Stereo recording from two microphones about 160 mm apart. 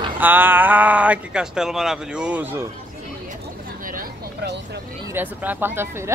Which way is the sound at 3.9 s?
75° right (ahead or behind).